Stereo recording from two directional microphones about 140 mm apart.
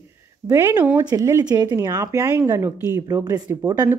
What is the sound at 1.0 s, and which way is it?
Speech, 25° right (ahead or behind).